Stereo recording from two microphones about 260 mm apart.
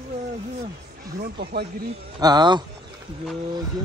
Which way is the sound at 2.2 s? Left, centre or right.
Centre.